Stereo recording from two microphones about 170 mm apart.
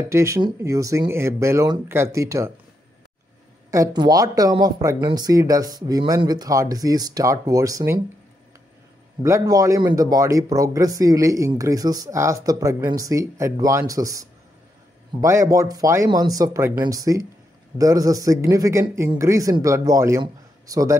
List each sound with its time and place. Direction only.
0.1 s speech: 15° right (ahead or behind)
3.7 s speech: 20° right (ahead or behind)
9.2 s speech: 20° right (ahead or behind)